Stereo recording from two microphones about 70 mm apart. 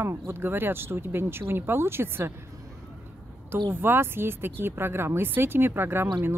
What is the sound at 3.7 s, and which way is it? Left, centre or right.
Speech, right.